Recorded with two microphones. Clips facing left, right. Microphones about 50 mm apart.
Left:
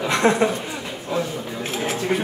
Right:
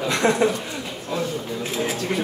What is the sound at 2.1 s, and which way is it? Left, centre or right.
Speech, centre.